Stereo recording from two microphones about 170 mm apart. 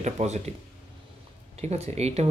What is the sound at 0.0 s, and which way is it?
Speech, 40° right (ahead or behind).